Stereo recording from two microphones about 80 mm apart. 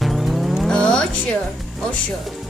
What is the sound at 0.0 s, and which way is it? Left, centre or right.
Music, centre.